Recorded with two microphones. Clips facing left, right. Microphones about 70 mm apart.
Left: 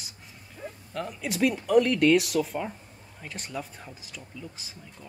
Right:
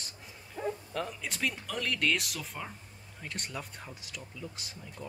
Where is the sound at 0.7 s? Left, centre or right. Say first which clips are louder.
Even; centre.